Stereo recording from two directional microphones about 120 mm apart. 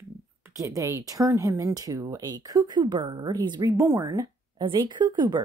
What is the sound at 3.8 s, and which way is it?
Speech, 25° right (ahead or behind).